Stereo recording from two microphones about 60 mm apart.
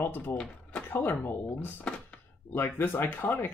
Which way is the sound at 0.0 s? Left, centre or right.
Left.